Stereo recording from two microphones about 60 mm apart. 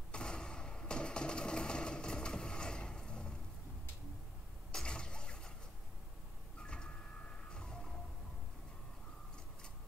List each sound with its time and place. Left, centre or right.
0.1 s sewing machine: centre
4.7 s a sound: centre
6.6 s printer: centre
7.5 s music: centre